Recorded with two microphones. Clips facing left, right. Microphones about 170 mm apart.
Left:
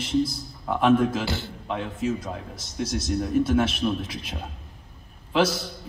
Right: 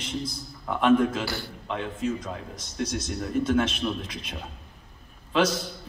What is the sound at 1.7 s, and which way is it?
Speech, 10° left (ahead or behind).